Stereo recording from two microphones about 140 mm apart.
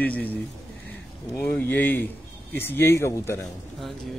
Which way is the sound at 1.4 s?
15° left (ahead or behind).